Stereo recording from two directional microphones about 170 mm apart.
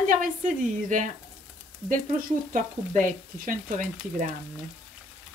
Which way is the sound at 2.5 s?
50° right (ahead or behind).